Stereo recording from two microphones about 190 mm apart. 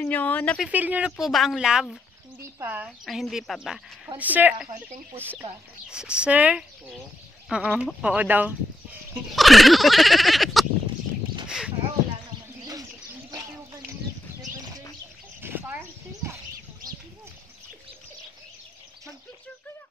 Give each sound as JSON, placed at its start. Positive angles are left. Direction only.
{"t": 0.0, "sound": "speech", "side_deg": 10}
{"t": 0.7, "sound": "a woman's voice", "side_deg": -10}
{"t": 5.4, "sound": "speech", "side_deg": -30}
{"t": 5.9, "sound": "a woman's voice", "side_deg": -5}
{"t": 11.4, "sound": "a sound", "side_deg": -5}
{"t": 15.4, "sound": "a sound", "side_deg": -10}